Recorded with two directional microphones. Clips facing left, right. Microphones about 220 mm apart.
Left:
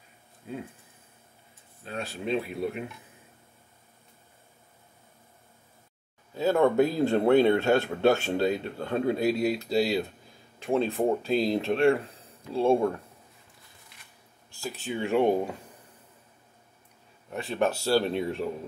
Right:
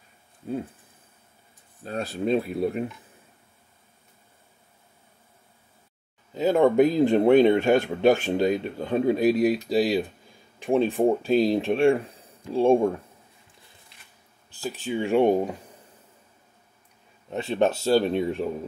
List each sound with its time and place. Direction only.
1.9 s speech: 40° right (ahead or behind)
6.3 s speech: 15° right (ahead or behind)
14.6 s speech: 15° right (ahead or behind)
17.3 s a man's voice: 25° right (ahead or behind)